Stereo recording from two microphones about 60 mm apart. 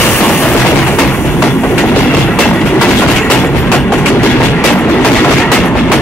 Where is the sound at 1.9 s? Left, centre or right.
Left; by 4.2 s centre.